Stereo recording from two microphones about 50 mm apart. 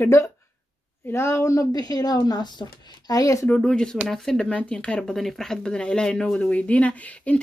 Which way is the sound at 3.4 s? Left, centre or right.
Left.